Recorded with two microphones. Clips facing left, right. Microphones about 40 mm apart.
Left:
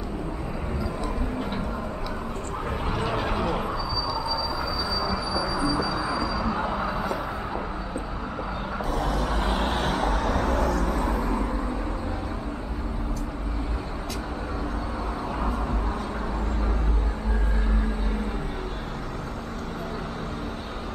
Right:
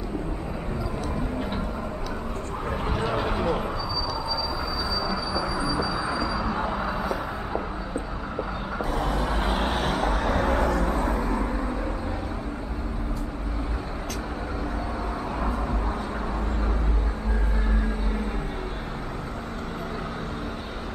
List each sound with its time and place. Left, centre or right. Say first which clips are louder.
2.9 s a sound: right 1 dB; centre
5.0 s train: even; centre
5.4 s music: left 3 dB; centre
8.9 s vehicle: even; centre